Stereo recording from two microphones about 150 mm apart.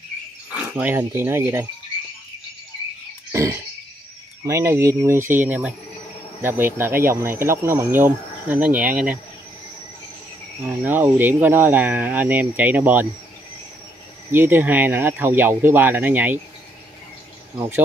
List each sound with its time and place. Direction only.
0.7 s speech: 10° right (ahead or behind)
3.3 s a sound: 20° right (ahead or behind)
4.5 s speech: 20° right (ahead or behind)
10.9 s speech: 15° right (ahead or behind)
14.3 s speech: 15° right (ahead or behind)
17.6 s speech: 15° right (ahead or behind)